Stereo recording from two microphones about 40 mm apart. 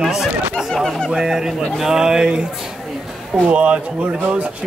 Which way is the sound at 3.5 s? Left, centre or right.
Right.